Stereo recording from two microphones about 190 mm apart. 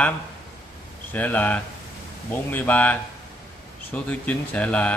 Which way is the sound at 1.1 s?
10° left (ahead or behind).